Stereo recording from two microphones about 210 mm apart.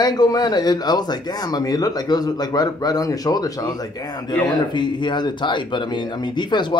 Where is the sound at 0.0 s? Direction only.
20° left (ahead or behind).